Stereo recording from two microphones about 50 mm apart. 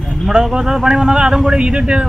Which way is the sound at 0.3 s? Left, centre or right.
Centre.